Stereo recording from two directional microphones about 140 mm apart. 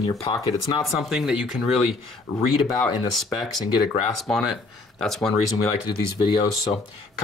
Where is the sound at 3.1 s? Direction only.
Centre (ahead or behind).